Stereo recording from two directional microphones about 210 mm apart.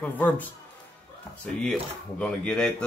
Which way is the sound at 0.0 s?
10° left (ahead or behind).